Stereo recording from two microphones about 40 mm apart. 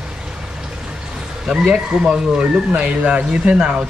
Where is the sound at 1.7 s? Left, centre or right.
Right.